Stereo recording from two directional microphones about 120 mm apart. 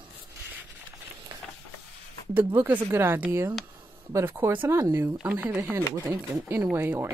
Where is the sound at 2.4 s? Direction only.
20° right (ahead or behind).